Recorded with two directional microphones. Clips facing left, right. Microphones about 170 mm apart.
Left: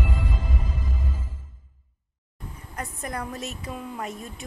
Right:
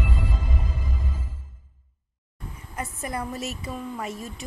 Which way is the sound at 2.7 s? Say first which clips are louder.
Right 2 dB; 5° right (ahead or behind).